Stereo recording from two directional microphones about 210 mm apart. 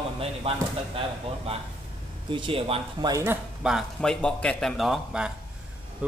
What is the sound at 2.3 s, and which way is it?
Speech, 25° right (ahead or behind).